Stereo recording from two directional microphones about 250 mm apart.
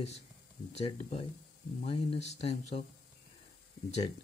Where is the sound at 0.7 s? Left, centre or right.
Left.